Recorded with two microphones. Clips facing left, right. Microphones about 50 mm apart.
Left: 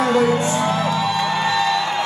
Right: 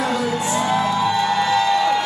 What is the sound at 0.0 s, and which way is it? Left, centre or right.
Music, left.